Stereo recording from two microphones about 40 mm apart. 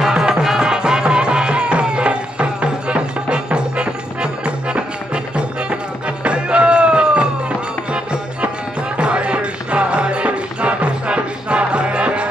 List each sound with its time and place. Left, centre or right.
0.0 s music: centre